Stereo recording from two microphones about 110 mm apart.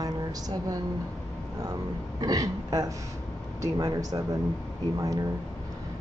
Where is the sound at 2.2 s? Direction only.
35° right (ahead or behind).